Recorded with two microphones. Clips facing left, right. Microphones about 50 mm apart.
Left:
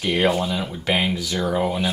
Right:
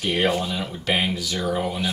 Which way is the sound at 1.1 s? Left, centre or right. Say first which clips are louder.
Left 2 dB; left.